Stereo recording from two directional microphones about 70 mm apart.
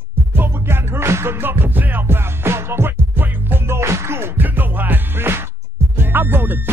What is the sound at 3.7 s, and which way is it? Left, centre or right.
Music, right.